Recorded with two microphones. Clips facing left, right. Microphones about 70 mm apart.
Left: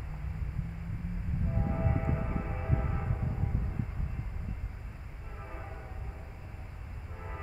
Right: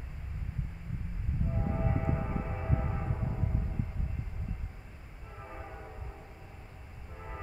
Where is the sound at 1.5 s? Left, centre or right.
Centre.